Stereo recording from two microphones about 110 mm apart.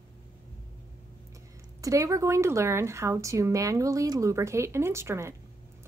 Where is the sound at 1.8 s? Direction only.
30° right (ahead or behind).